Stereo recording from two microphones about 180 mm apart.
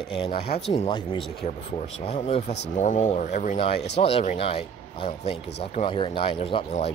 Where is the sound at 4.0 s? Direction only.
30° left (ahead or behind).